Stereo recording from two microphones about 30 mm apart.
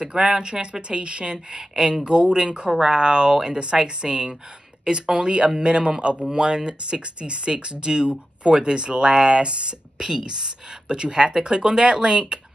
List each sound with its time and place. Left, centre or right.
0.0 s speech: right
9.9 s speech: right